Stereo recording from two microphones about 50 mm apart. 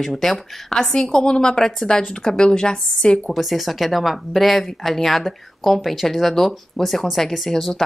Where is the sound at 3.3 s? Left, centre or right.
Centre.